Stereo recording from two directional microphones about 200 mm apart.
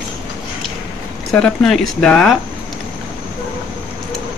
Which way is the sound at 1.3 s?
5° left (ahead or behind).